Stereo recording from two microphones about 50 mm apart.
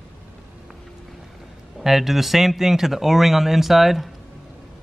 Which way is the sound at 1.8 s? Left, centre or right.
Centre.